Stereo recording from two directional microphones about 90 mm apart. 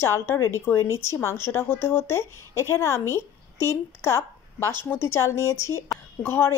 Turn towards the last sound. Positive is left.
turn(degrees=25)  # may be behind; listen again after turning